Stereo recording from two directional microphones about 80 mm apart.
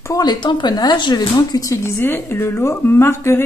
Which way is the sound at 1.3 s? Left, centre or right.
Left.